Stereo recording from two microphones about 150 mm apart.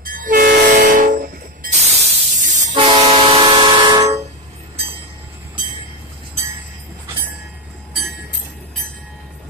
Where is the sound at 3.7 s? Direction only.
30° right (ahead or behind).